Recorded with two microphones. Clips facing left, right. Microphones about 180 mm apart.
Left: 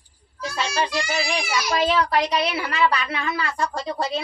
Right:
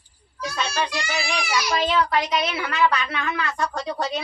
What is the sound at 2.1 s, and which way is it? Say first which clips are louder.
Speech: left 1 dB; 35° left (ahead or behind).